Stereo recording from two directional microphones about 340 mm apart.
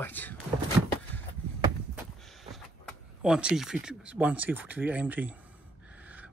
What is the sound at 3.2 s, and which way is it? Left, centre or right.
Speech, centre.